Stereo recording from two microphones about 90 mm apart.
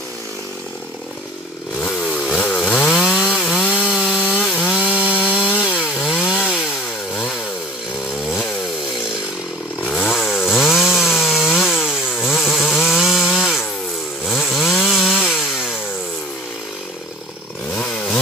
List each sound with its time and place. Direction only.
1.8 s chainsaw: 10° left (ahead or behind)
3.3 s wood: centre (ahead or behind)
3.8 s chainsaw: 10° right (ahead or behind)
4.3 s wood: 10° left (ahead or behind)
5.6 s chainsaw: 10° right (ahead or behind)
9.8 s chainsaw: 10° left (ahead or behind)
17.7 s chainsaw: 10° left (ahead or behind)